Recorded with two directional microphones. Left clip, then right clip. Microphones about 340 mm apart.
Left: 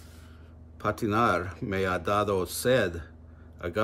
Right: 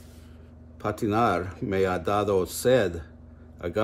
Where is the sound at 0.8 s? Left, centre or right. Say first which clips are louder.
Right 1 dB; centre.